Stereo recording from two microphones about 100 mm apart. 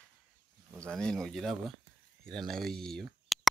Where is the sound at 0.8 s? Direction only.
5° left (ahead or behind).